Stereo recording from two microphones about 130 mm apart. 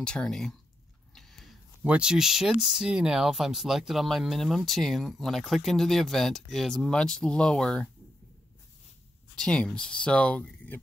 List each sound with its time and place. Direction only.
0.0 s speech: 5° left (ahead or behind)
1.9 s speech: 5° right (ahead or behind)
9.4 s speech: 5° left (ahead or behind)